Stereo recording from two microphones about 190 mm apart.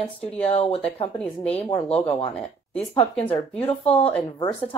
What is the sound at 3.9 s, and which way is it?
Speech, 10° left (ahead or behind).